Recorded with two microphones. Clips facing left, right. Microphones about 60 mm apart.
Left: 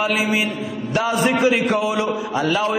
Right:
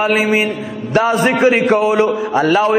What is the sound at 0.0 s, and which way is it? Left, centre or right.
A man's voice, right.